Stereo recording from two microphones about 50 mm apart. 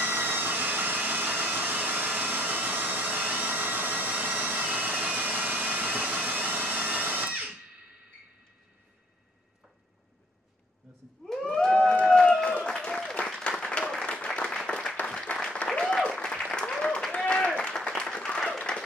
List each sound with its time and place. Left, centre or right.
0.0 s vacuum cleaner: right
11.4 s a sound: centre
12.7 s applause: centre
15.8 s applause: centre